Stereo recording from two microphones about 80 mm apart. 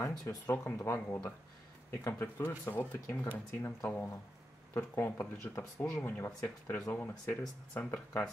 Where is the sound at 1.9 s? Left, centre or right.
Left.